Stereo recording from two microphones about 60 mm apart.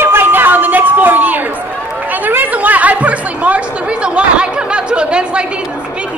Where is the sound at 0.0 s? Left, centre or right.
Right.